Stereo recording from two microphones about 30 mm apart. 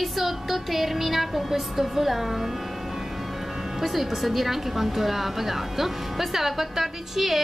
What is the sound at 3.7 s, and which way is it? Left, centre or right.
A woman's voice, centre.